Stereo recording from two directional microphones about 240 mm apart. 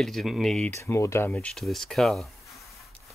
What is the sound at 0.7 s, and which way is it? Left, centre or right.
Speech, centre.